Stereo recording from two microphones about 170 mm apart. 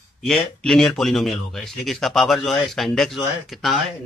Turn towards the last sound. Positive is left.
turn(degrees=0)  # may be behind; listen again after turning